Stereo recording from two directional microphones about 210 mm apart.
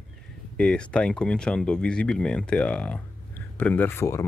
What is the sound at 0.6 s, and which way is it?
Speech, 5° left (ahead or behind).